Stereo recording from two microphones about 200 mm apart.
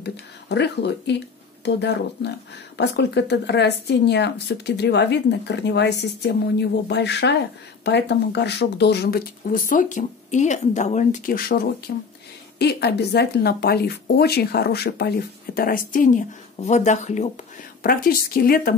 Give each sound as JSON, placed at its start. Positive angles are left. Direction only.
{"t": 0.0, "sound": "speech", "side_deg": 55}
{"t": 17.8, "sound": "speech", "side_deg": 50}